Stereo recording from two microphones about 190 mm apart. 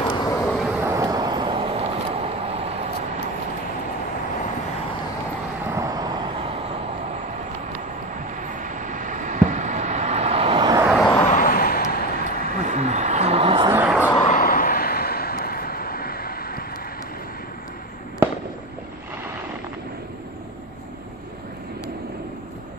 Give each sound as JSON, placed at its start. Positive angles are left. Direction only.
{"t": 0.0, "sound": "vehicle", "side_deg": 25}
{"t": 0.5, "sound": "vehicle", "side_deg": 0}
{"t": 5.7, "sound": "vehicle", "side_deg": -15}
{"t": 8.4, "sound": "vehicle", "side_deg": -40}
{"t": 10.9, "sound": "vehicle", "side_deg": 0}
{"t": 11.2, "sound": "vehicle", "side_deg": 45}
{"t": 12.4, "sound": "a sound", "side_deg": -40}
{"t": 13.7, "sound": "vehicle", "side_deg": -10}
{"t": 14.2, "sound": "vehicle", "side_deg": 45}